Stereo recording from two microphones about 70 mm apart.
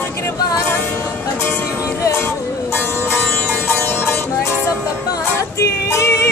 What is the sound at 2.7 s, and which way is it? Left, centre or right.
Music, left.